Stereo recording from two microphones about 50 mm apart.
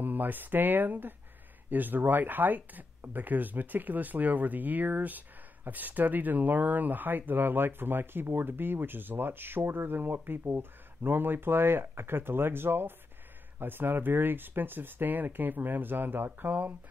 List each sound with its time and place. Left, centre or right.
0.0 s speech: right